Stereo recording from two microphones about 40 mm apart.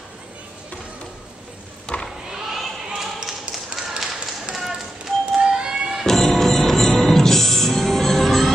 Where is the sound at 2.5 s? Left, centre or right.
Centre.